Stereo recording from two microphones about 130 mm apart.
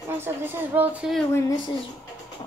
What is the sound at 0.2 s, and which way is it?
Speech, 15° right (ahead or behind).